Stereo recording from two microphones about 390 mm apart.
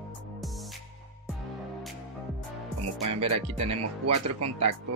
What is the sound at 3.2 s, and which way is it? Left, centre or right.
Speech, centre.